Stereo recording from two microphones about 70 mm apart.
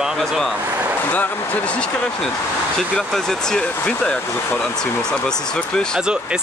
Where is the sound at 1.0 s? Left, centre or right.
Left.